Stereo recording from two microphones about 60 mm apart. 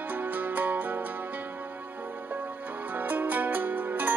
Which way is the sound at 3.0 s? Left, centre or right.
Right.